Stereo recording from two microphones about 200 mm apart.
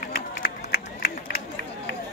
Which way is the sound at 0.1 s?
50° left (ahead or behind).